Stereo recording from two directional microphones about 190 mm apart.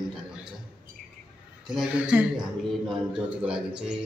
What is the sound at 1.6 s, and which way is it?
A man's voice, 5° right (ahead or behind).